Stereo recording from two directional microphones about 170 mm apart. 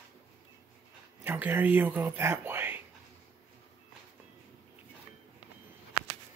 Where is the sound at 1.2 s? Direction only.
10° right (ahead or behind).